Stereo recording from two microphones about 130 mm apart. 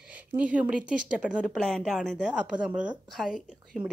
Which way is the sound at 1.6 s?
5° left (ahead or behind).